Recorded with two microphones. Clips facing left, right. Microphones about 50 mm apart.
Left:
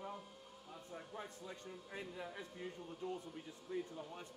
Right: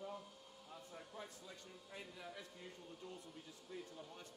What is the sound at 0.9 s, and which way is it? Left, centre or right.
A man's voice, left.